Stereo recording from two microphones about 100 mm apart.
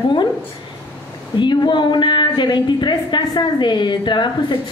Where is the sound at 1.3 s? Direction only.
50° left (ahead or behind).